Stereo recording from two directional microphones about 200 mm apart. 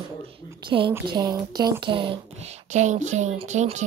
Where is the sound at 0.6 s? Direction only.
25° right (ahead or behind).